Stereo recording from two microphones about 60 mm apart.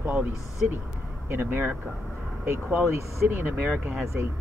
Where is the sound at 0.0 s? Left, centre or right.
Right.